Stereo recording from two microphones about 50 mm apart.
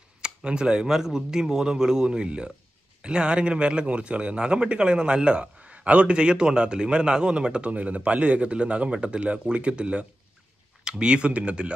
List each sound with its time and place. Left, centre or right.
0.2 s a man's voice: centre